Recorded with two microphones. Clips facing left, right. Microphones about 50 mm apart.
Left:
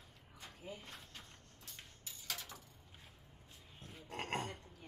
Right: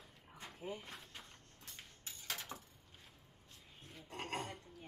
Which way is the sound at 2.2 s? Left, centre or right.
Right.